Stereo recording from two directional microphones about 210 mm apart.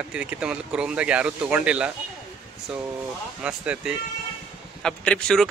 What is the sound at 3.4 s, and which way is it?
A man's voice, 5° right (ahead or behind).